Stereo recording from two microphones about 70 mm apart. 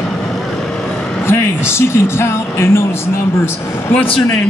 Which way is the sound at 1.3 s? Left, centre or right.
Left.